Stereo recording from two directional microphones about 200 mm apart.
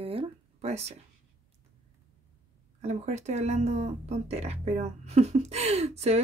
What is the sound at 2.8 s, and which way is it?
Speech, 35° right (ahead or behind).